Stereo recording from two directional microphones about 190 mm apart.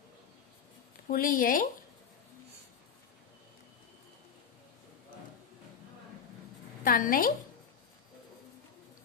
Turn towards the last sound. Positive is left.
turn(degrees=45)  # may be behind; listen again after turning